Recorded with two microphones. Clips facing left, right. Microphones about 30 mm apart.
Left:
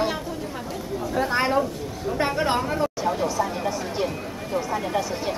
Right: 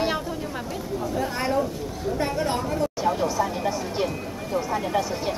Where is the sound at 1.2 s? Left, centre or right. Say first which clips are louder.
Left 4 dB; left.